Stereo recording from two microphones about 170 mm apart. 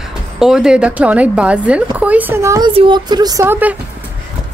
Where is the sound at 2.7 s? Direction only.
30° right (ahead or behind); by 3.7 s 10° right (ahead or behind).